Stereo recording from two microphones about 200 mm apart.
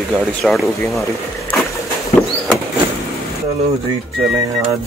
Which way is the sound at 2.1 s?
35° left (ahead or behind).